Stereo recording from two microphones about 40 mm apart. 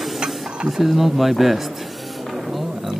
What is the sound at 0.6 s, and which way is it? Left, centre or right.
Speech, centre.